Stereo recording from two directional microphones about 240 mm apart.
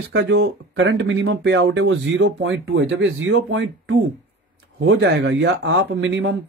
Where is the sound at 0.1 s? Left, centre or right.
Right.